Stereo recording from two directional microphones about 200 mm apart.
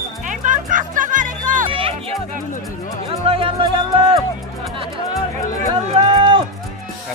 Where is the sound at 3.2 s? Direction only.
30° right (ahead or behind).